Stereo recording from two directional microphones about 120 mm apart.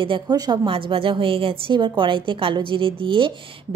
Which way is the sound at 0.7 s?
50° right (ahead or behind).